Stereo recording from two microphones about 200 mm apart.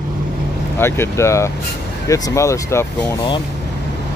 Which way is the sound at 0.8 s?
10° left (ahead or behind).